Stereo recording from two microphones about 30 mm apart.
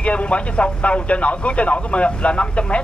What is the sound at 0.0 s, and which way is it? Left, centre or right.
Speech, left.